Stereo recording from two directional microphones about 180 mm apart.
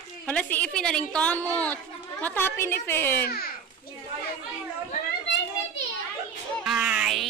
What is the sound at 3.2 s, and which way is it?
Speech, 60° left (ahead or behind).